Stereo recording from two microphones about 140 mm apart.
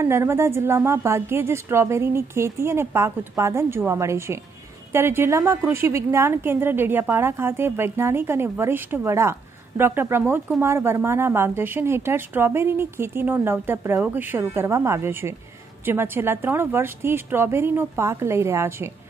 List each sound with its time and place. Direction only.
0.0 s a woman's voice: 20° right (ahead or behind)